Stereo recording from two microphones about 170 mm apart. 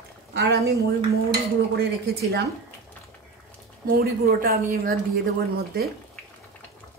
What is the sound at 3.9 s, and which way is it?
A woman's voice, 60° right (ahead or behind).